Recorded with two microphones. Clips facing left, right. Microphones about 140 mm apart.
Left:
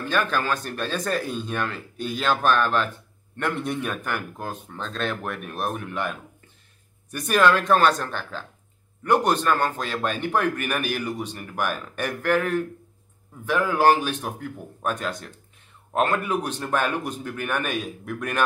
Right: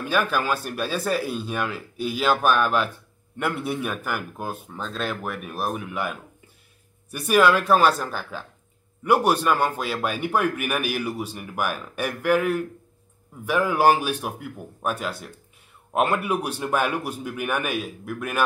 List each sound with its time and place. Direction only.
0.0 s speech: 10° right (ahead or behind)